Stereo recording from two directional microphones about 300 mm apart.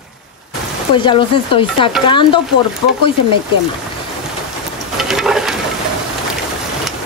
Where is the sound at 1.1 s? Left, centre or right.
Centre.